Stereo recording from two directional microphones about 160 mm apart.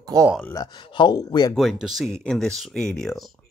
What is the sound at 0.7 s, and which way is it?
Speech, 30° left (ahead or behind).